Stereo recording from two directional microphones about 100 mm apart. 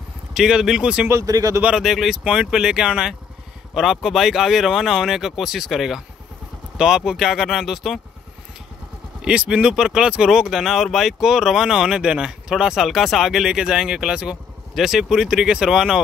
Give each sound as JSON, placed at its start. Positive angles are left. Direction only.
{"t": 0.3, "sound": "speech", "side_deg": -5}
{"t": 1.2, "sound": "speech", "side_deg": -35}
{"t": 1.6, "sound": "speech", "side_deg": -5}
{"t": 9.2, "sound": "speech", "side_deg": -10}